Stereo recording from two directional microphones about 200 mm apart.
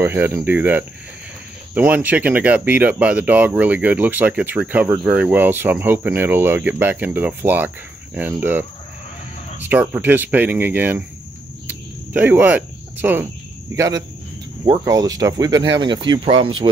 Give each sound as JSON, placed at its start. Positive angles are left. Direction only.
{"t": 0.0, "sound": "speech", "side_deg": -10}
{"t": 11.6, "sound": "cricket", "side_deg": -10}
{"t": 13.7, "sound": "speech", "side_deg": -15}